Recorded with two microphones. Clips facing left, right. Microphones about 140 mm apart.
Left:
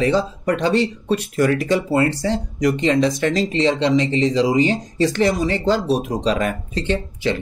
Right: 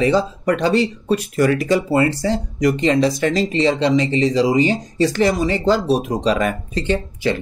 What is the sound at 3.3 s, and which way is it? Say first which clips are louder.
Speech: right 1 dB; 5° right (ahead or behind).